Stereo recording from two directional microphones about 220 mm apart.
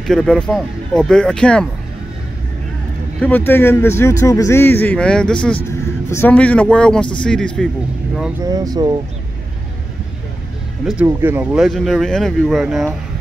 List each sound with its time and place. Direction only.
0.0 s speech: centre (ahead or behind)
3.2 s speech: 10° left (ahead or behind)
8.2 s speech: 15° right (ahead or behind)
11.0 s speech: 10° right (ahead or behind)